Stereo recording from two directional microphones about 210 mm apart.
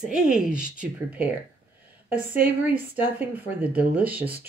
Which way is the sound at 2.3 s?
10° right (ahead or behind).